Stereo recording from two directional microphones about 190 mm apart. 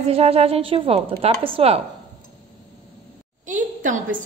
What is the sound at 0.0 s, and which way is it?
A woman's voice, 30° right (ahead or behind).